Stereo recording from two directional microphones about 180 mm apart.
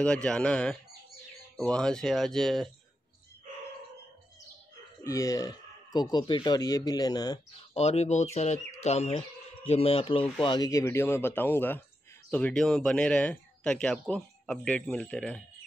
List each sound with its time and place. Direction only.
0.0 s speech: 5° left (ahead or behind)
5.0 s speech: 15° left (ahead or behind)
7.7 s speech: 35° left (ahead or behind); by 15.4 s 5° left (ahead or behind)